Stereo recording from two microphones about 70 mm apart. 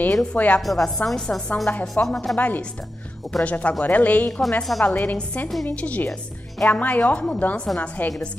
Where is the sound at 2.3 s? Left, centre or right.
Left.